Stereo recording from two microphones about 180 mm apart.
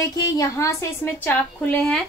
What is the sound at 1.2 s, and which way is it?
Speech, 10° left (ahead or behind).